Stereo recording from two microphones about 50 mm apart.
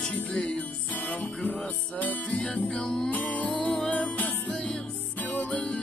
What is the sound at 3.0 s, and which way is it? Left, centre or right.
Music, left.